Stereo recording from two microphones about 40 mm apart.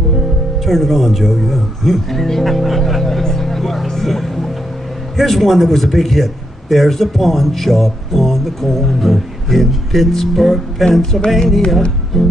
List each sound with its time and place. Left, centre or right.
0.7 s music: centre
5.1 s a man's voice: centre
11.1 s music: centre
12.1 s a man's voice: centre